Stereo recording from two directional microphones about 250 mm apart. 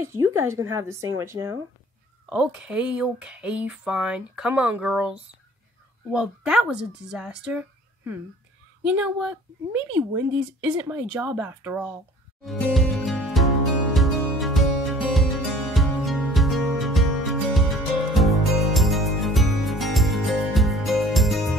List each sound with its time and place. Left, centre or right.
0.0 s a woman's voice: centre
12.4 s music: centre